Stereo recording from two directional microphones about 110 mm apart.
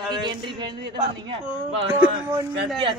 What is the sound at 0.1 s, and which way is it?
Speech, 45° right (ahead or behind).